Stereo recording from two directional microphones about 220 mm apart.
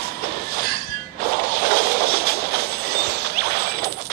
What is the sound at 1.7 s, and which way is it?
Train, 45° right (ahead or behind).